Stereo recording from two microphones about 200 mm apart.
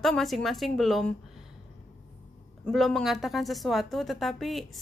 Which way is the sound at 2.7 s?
Centre (ahead or behind).